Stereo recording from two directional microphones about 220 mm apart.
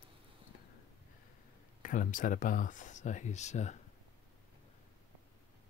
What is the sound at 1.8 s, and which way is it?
Speech, 35° left (ahead or behind).